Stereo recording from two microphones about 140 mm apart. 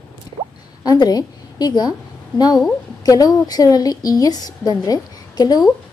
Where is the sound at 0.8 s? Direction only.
30° left (ahead or behind).